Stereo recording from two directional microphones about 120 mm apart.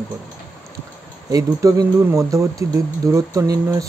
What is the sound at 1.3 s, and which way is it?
Speech, 30° right (ahead or behind).